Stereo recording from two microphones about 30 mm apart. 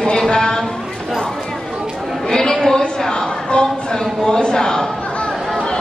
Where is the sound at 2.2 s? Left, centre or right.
Left.